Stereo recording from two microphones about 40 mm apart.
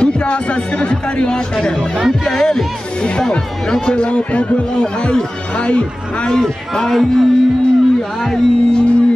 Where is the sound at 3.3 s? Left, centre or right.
Centre.